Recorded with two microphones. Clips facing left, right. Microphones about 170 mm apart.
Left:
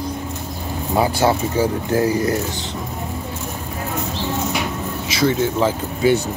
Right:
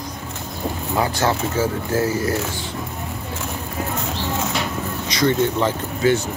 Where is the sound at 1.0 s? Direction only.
15° left (ahead or behind).